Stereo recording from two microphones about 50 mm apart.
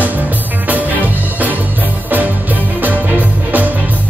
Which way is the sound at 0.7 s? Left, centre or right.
Right.